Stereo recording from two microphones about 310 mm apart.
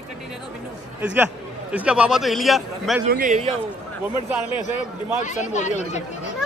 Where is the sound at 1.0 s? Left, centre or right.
Centre.